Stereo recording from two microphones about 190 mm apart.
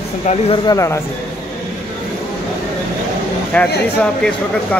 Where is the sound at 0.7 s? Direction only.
15° left (ahead or behind).